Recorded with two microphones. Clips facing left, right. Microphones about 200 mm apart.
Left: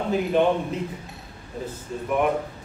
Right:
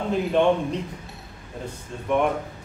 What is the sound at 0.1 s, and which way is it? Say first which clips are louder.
Speech: right 1 dB; 5° left (ahead or behind).